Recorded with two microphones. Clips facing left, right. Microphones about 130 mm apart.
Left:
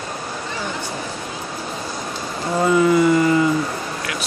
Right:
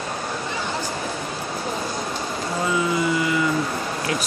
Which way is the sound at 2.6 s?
55° left (ahead or behind).